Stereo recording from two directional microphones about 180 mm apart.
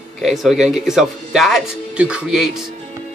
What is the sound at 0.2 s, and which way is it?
Speech, centre (ahead or behind).